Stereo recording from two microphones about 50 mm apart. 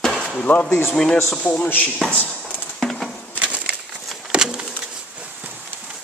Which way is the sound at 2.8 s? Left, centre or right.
Centre.